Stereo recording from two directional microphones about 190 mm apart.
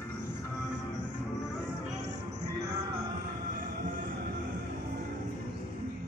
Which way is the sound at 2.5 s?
60° right (ahead or behind).